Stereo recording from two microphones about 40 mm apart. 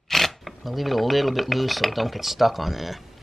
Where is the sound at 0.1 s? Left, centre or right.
Centre.